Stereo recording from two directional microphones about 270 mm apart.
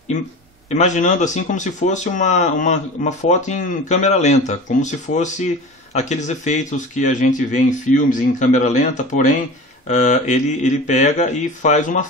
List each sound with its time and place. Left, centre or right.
0.7 s speech: left